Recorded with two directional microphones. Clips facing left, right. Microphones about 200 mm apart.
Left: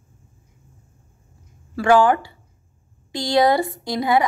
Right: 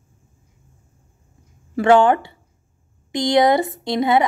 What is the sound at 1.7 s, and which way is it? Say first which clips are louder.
Speech: right 2 dB; 25° right (ahead or behind).